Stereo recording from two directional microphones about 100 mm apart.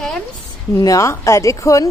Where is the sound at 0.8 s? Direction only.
35° left (ahead or behind).